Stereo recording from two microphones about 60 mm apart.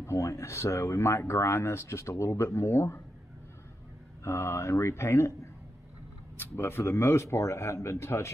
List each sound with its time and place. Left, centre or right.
0.0 s speech: left
4.2 s speech: left